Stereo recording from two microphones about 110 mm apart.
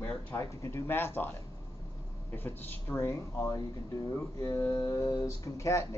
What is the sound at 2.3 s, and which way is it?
Speech, 20° left (ahead or behind).